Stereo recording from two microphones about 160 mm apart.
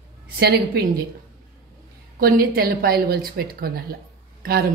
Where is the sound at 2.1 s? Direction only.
70° right (ahead or behind).